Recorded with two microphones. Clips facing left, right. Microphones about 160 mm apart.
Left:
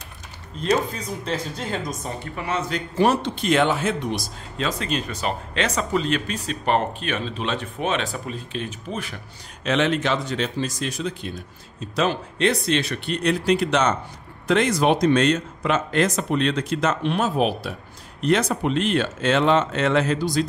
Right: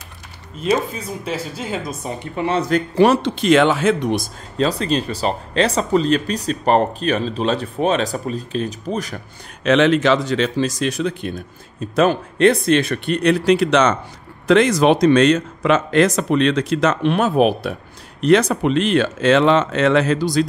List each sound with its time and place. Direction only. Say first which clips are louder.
0.6 s speech: right 3 dB; 5° right (ahead or behind)
2.0 s speech: right 6 dB; 25° right (ahead or behind)
3.0 s speech: right 5 dB; 90° right
4.6 s speech: right 7 dB; 35° right (ahead or behind)
9.7 s speech: right 7 dB; 90° right; by 17.7 s 60° right (ahead or behind)
18.2 s speech: right 6 dB; 80° right